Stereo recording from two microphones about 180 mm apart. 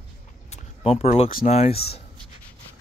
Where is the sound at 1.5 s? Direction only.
35° left (ahead or behind).